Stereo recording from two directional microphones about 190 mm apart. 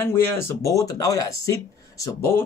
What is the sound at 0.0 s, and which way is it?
Speech, 10° left (ahead or behind).